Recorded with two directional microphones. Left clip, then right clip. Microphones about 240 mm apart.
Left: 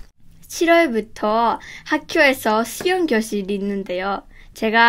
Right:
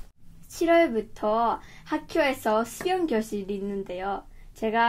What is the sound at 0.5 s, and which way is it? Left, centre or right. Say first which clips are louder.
A woman's voice: left 6 dB; left.